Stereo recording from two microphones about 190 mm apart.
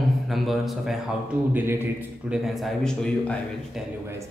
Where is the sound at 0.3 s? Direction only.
Centre (ahead or behind).